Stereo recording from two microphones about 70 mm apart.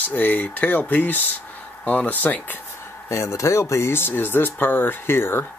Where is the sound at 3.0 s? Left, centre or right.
Left.